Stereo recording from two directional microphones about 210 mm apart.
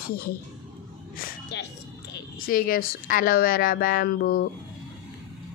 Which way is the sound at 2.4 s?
40° left (ahead or behind).